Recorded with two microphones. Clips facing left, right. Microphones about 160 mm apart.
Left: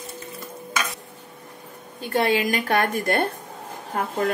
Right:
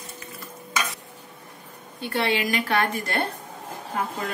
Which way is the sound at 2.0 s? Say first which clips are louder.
Left 3 dB; 45° left (ahead or behind).